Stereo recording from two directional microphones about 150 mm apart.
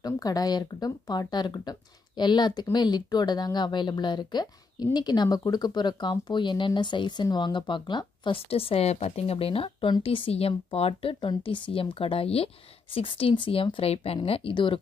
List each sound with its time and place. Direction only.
0.0 s speech: 25° left (ahead or behind)